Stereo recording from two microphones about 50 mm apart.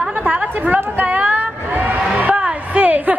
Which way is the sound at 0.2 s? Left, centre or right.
Right.